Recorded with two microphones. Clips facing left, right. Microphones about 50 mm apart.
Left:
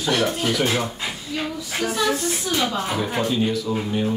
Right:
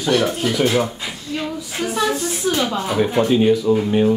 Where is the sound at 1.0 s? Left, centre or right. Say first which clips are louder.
Right 1 dB; centre.